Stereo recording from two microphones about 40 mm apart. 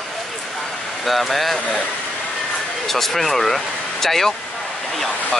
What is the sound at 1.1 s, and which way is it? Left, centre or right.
Speech, centre.